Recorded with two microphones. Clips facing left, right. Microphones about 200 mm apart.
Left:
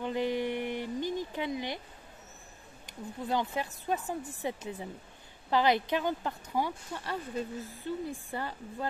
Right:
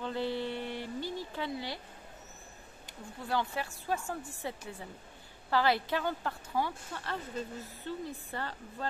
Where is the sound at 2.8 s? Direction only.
20° left (ahead or behind).